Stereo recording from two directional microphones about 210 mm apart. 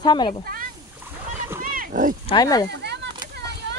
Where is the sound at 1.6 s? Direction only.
40° right (ahead or behind).